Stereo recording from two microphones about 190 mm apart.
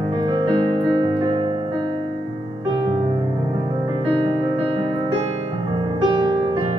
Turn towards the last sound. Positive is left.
turn(degrees=-25)  # may be behind; listen again after turning